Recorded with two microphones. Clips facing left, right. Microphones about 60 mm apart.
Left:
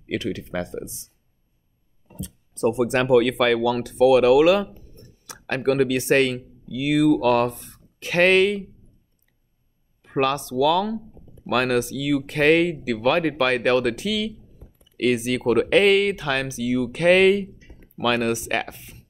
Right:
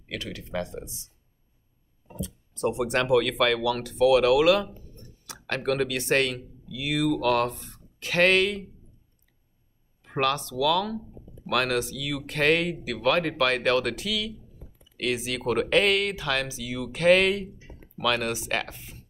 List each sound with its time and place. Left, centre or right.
0.1 s speech: left
2.2 s speech: centre
10.1 s speech: centre